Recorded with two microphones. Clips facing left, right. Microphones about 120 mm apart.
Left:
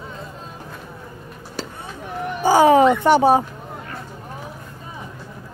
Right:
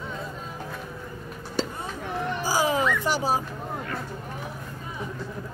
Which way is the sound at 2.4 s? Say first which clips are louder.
Left 13 dB; 60° left (ahead or behind).